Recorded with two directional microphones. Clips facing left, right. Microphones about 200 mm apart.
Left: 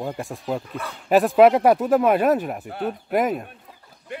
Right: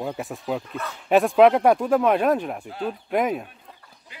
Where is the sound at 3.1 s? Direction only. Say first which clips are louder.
Left 1 dB; centre (ahead or behind).